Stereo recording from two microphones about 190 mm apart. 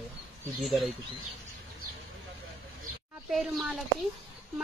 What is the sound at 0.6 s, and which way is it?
Speech, centre (ahead or behind).